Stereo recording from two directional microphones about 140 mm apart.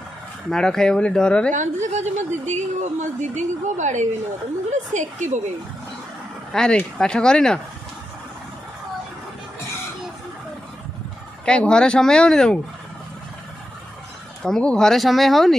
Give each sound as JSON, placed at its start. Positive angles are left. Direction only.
{"t": 0.5, "sound": "speech", "side_deg": 5}
{"t": 1.5, "sound": "a woman's voice", "side_deg": -60}
{"t": 6.5, "sound": "speech", "side_deg": 5}
{"t": 11.4, "sound": "speech", "side_deg": 5}
{"t": 14.4, "sound": "speech", "side_deg": 5}